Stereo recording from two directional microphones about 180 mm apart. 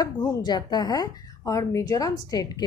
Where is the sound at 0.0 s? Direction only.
20° left (ahead or behind).